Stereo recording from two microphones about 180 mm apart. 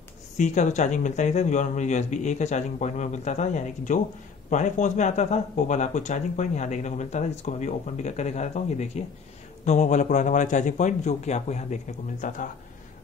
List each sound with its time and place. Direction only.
0.4 s speech: 45° left (ahead or behind)